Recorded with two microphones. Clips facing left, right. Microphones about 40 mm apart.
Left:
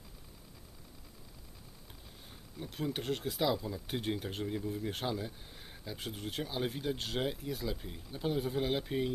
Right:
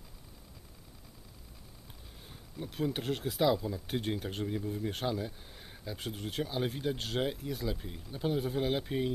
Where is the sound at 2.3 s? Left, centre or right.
Centre.